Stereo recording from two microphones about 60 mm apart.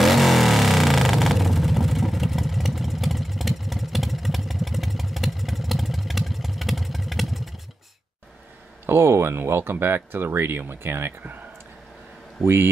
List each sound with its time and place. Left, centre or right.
0.0 s vehicle: centre
8.8 s speech: right
12.4 s speech: centre